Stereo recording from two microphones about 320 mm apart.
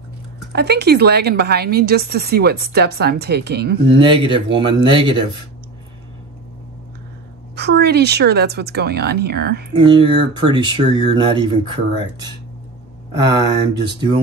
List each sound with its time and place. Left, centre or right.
0.5 s a woman's voice: right
4.0 s speech: centre
7.5 s a woman's voice: right
9.8 s speech: centre